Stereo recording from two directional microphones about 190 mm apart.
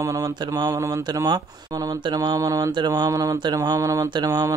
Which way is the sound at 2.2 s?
20° right (ahead or behind).